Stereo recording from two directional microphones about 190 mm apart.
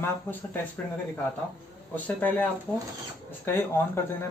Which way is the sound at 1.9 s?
10° left (ahead or behind).